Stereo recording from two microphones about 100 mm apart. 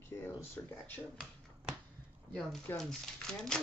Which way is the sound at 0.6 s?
25° left (ahead or behind).